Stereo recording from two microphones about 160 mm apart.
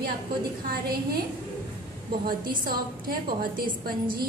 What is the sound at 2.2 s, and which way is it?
A woman's voice, 65° right (ahead or behind).